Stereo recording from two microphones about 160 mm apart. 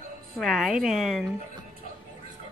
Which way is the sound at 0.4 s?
Centre (ahead or behind).